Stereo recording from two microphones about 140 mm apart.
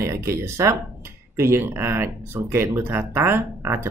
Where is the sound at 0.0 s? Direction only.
20° right (ahead or behind).